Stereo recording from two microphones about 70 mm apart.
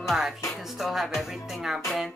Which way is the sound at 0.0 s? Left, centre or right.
Centre.